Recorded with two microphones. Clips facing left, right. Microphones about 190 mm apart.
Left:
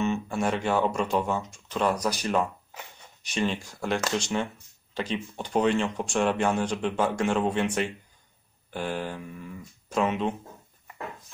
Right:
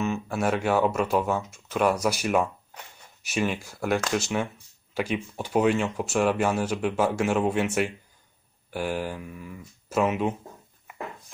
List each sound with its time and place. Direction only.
0.0 s speech: 5° right (ahead or behind)